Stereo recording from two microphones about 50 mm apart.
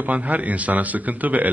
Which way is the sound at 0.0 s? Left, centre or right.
Right.